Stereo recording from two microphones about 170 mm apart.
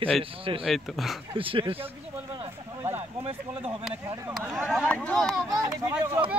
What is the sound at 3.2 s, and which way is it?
Speech, 35° right (ahead or behind).